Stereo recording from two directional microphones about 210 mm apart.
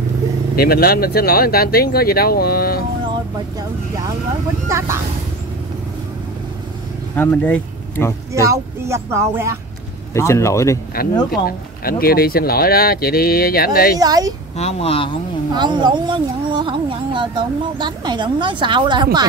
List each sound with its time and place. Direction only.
0.6 s speech: 45° left (ahead or behind)
4.6 s speech: 15° right (ahead or behind)
7.2 s speech: 10° left (ahead or behind)
8.3 s speech: 15° right (ahead or behind)
10.1 s speech: 15° left (ahead or behind)
11.0 s speech: 45° left (ahead or behind)
13.9 s speech: 20° right (ahead or behind)
14.6 s speech: 30° left (ahead or behind)
15.5 s speech: 20° right (ahead or behind)